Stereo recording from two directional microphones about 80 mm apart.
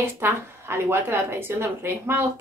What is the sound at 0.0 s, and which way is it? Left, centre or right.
A woman's voice, right.